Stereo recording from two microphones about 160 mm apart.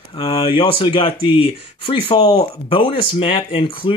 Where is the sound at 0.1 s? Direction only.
35° left (ahead or behind).